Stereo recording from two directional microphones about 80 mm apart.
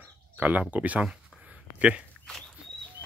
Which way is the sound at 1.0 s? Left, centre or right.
Centre.